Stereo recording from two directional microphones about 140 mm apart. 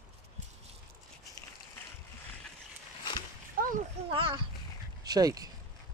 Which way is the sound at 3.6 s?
90° right.